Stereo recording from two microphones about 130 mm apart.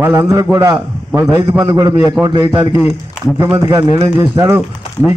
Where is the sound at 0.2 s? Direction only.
25° right (ahead or behind).